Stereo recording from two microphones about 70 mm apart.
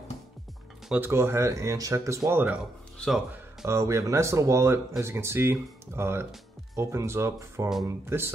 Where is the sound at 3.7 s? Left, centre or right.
Right.